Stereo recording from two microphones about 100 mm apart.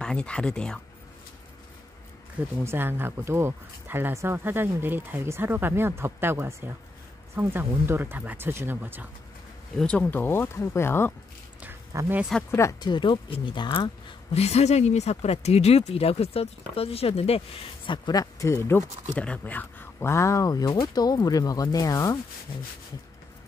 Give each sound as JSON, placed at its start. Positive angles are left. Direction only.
{"t": 0.0, "sound": "speech", "side_deg": 10}
{"t": 2.6, "sound": "speech", "side_deg": -25}
{"t": 9.8, "sound": "speech", "side_deg": 10}
{"t": 11.9, "sound": "speech", "side_deg": -30}
{"t": 12.4, "sound": "speech", "side_deg": 30}
{"t": 12.8, "sound": "speech", "side_deg": 50}
{"t": 14.3, "sound": "speech", "side_deg": 90}
{"t": 17.8, "sound": "speech", "side_deg": 50}
{"t": 19.1, "sound": "speech", "side_deg": 15}